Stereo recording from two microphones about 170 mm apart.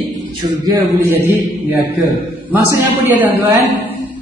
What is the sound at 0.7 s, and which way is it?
Speech, 15° right (ahead or behind).